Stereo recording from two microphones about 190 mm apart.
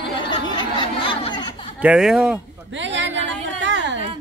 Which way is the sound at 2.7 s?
75° right (ahead or behind).